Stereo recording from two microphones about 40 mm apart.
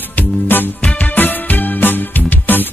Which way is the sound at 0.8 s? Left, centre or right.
Left.